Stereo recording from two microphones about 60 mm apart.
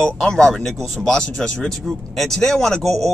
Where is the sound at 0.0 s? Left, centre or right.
Centre.